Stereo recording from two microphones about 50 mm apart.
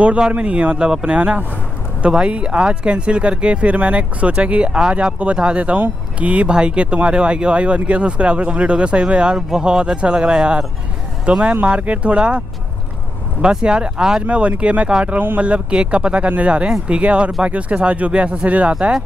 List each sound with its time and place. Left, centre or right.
0.0 s speech: right
14.2 s speech: right